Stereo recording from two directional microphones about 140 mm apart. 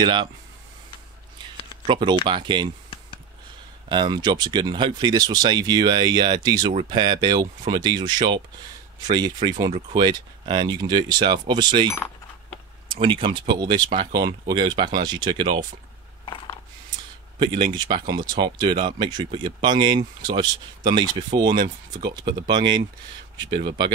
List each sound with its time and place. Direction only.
0.0 s speech: 35° right (ahead or behind)
1.9 s speech: 35° right (ahead or behind)
3.9 s speech: 35° right (ahead or behind)
17.4 s speech: 35° right (ahead or behind)